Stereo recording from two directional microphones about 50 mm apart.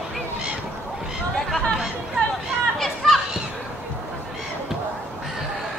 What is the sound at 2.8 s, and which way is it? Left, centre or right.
Children playing, centre.